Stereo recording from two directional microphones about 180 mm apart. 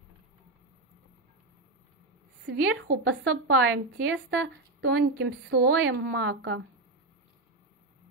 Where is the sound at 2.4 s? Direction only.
85° right.